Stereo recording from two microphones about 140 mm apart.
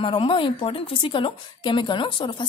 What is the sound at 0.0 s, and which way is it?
A woman's voice, 40° left (ahead or behind).